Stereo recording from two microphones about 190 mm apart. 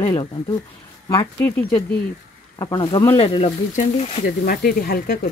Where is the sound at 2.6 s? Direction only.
25° left (ahead or behind).